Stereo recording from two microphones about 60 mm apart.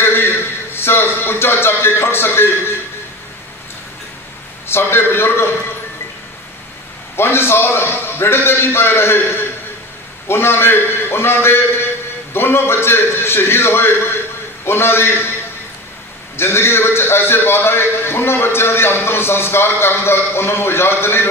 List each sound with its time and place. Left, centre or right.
0.0 s a man's voice: left
4.6 s a man's voice: left
7.2 s a man's voice: left
16.3 s a man's voice: left